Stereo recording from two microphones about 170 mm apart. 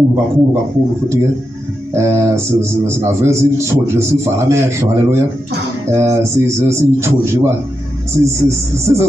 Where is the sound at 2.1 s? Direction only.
15° right (ahead or behind).